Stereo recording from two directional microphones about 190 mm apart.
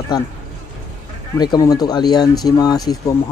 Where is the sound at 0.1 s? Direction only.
20° left (ahead or behind).